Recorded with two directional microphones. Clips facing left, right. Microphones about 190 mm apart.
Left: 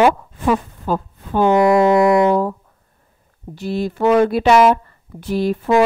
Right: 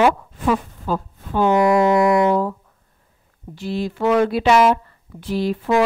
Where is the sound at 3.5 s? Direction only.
45° left (ahead or behind).